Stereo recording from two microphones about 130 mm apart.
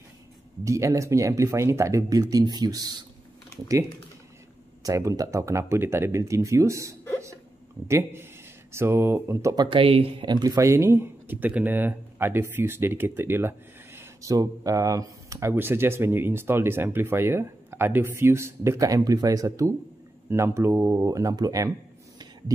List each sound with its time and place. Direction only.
0.7 s speech: 25° right (ahead or behind)
4.8 s speech: 25° right (ahead or behind)
9.7 s speech: 45° right (ahead or behind); by 21.7 s 25° right (ahead or behind)